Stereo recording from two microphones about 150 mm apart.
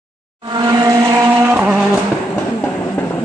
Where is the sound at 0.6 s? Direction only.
30° right (ahead or behind).